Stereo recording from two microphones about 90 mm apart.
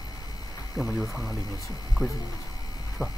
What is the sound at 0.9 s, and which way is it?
Speech, 40° left (ahead or behind).